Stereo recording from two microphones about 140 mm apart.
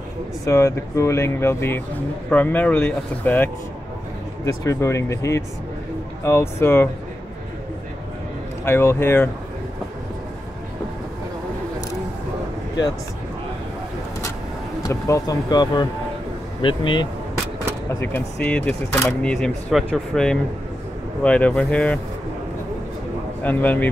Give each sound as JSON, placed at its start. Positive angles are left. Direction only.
{"t": 0.5, "sound": "speech", "side_deg": 20}
{"t": 4.6, "sound": "speech", "side_deg": 20}
{"t": 8.6, "sound": "speech", "side_deg": 15}
{"t": 14.8, "sound": "speech", "side_deg": 25}
{"t": 18.0, "sound": "speech", "side_deg": 10}
{"t": 23.4, "sound": "speech", "side_deg": 10}